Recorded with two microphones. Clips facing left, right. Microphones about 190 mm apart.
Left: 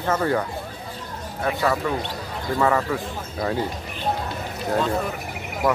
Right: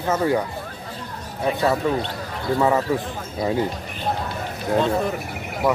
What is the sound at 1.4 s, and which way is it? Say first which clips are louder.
Speech: right 3 dB; 25° right (ahead or behind).